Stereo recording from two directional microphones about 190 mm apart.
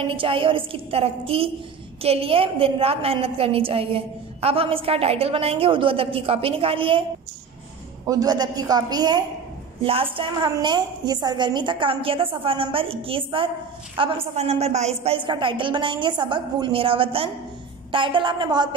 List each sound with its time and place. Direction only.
0.0 s a woman's voice: 30° right (ahead or behind)